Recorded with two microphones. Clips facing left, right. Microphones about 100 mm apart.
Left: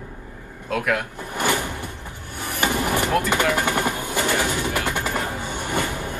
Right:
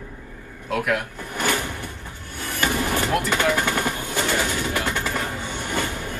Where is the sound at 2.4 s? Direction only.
20° left (ahead or behind).